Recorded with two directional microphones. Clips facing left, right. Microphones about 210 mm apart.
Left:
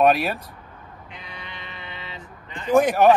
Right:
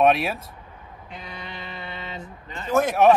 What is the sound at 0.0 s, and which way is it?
Speech, centre (ahead or behind).